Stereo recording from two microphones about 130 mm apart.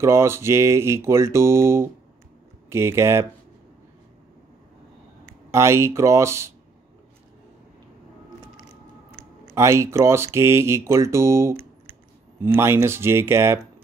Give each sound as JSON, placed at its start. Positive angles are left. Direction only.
{"t": 0.0, "sound": "speech", "side_deg": -20}
{"t": 5.5, "sound": "speech", "side_deg": -20}
{"t": 9.5, "sound": "speech", "side_deg": -20}